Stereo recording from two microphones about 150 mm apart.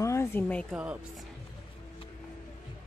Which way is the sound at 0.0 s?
20° left (ahead or behind).